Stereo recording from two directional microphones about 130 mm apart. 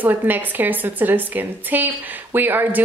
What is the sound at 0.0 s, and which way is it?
Speech, 15° right (ahead or behind).